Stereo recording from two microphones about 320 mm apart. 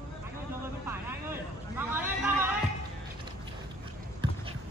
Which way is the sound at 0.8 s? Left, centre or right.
Centre.